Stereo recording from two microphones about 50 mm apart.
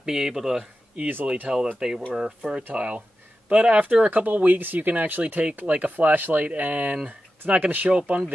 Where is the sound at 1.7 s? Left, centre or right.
Centre.